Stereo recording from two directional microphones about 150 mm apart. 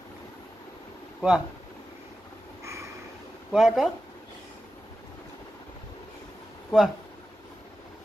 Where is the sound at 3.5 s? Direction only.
Centre (ahead or behind).